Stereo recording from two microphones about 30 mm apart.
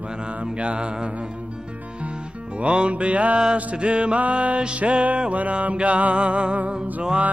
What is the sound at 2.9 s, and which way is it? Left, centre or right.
Music, right.